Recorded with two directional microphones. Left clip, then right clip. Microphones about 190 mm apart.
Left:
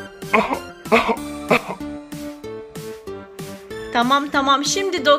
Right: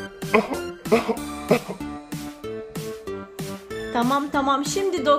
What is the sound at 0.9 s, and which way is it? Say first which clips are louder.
Speech: left 5 dB; 15° right (ahead or behind).